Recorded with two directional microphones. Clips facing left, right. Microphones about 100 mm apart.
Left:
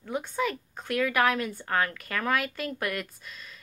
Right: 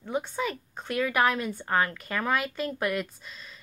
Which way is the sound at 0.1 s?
Centre (ahead or behind).